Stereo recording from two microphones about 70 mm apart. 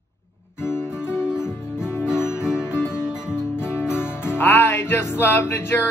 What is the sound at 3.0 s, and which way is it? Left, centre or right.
Music, centre.